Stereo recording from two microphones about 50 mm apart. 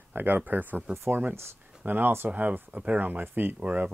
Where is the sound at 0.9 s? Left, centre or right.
Right.